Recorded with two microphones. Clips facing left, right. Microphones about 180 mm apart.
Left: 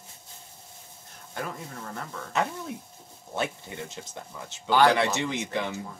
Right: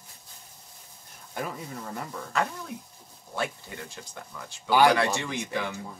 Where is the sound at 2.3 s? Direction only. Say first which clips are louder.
Left 1 dB; 20° left (ahead or behind).